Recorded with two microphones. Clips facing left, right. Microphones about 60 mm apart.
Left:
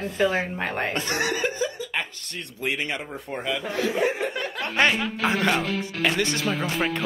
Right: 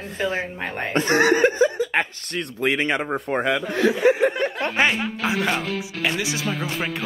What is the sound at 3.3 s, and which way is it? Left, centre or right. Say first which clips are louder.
Speech: right 4 dB; right.